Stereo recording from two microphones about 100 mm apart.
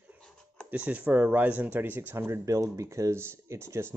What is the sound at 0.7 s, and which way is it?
Speech, 15° right (ahead or behind).